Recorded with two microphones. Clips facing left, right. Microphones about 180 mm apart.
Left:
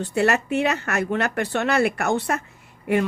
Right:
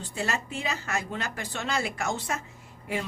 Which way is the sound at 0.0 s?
65° left (ahead or behind).